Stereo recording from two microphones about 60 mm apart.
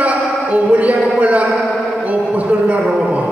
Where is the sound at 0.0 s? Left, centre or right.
Right.